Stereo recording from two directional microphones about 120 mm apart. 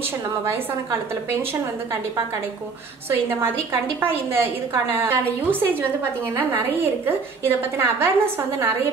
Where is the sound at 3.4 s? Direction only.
20° right (ahead or behind).